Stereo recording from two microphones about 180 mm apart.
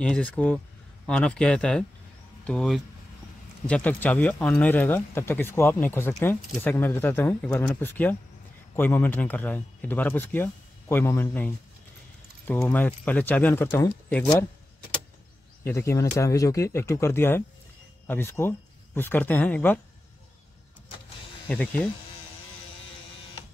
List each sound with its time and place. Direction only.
0.0 s speech: 5° left (ahead or behind)
15.6 s speech: 15° left (ahead or behind)
21.5 s speech: 10° left (ahead or behind)